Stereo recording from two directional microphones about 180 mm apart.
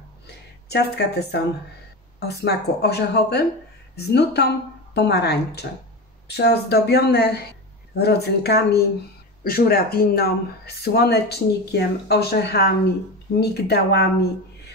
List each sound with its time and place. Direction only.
0.7 s a woman's voice: 65° left (ahead or behind)